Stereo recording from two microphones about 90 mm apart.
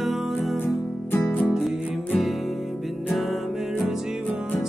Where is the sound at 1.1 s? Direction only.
20° left (ahead or behind).